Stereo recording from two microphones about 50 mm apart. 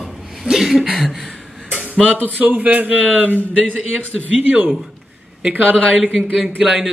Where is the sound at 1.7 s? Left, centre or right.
Right.